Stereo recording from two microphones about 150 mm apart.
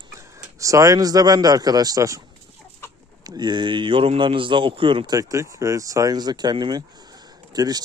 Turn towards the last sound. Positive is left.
turn(degrees=-25)  # may be behind; listen again after turning